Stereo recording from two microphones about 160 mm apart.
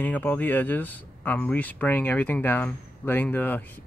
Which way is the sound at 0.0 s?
10° left (ahead or behind).